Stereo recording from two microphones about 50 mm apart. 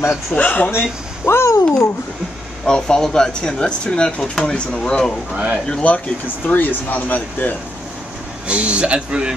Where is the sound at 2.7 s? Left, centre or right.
Centre.